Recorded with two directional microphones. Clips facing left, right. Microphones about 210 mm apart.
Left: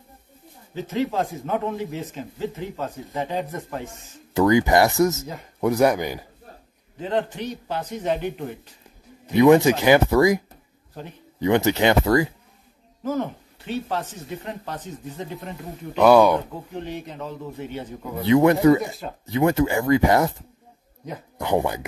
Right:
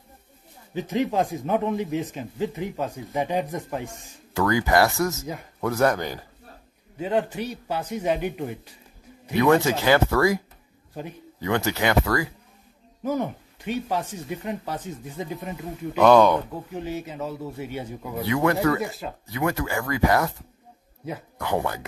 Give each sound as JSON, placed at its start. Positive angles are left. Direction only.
{"t": 0.7, "sound": "a man's voice", "side_deg": -15}
{"t": 4.3, "sound": "speech", "side_deg": 20}
{"t": 7.0, "sound": "a man's voice", "side_deg": -10}
{"t": 9.3, "sound": "speech", "side_deg": 15}
{"t": 11.4, "sound": "speech", "side_deg": 20}
{"t": 13.0, "sound": "a man's voice", "side_deg": -15}
{"t": 16.0, "sound": "speech", "side_deg": 10}
{"t": 16.7, "sound": "a man's voice", "side_deg": -5}
{"t": 18.2, "sound": "speech", "side_deg": 20}
{"t": 21.4, "sound": "speech", "side_deg": 20}